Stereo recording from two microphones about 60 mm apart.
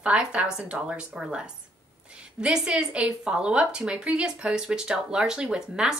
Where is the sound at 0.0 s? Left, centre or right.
Centre.